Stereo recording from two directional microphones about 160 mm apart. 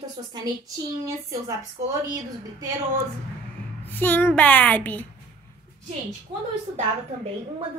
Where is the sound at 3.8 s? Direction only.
10° left (ahead or behind).